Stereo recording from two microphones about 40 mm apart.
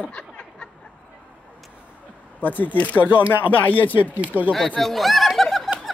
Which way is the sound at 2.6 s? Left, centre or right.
Left.